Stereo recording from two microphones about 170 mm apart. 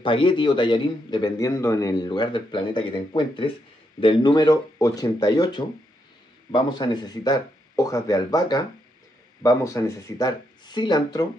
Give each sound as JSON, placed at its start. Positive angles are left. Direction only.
{"t": 0.0, "sound": "a man's voice", "side_deg": 30}